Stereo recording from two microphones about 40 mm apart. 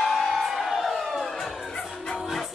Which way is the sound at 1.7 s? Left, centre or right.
Centre.